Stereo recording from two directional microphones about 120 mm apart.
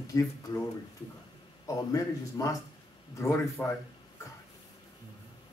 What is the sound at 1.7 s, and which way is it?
Speech, 30° left (ahead or behind).